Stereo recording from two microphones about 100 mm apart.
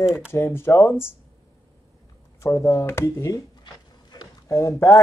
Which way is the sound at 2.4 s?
30° left (ahead or behind).